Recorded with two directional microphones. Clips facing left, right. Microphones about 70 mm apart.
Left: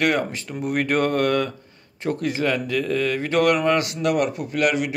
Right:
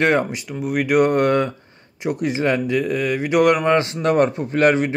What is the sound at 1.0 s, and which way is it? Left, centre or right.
Speech, right.